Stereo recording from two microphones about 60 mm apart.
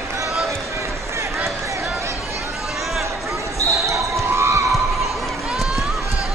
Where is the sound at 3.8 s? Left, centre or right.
Right.